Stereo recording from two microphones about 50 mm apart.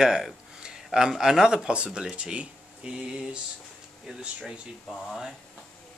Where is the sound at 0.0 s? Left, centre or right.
Centre.